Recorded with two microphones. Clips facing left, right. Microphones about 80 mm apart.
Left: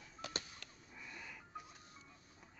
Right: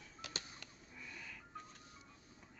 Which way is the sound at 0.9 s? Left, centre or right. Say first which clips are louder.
Even; centre.